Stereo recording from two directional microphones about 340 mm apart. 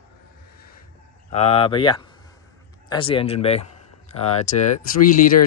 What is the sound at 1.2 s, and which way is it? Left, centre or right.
Speech, centre.